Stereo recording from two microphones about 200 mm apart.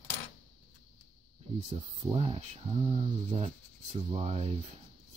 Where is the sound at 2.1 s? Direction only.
30° right (ahead or behind).